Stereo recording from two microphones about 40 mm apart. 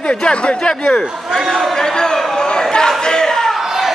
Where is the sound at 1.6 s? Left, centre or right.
Centre.